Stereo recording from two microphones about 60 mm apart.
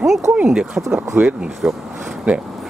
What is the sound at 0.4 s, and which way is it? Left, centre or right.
Speech, centre.